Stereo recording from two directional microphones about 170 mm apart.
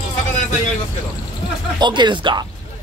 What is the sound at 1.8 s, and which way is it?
Speech, 25° right (ahead or behind).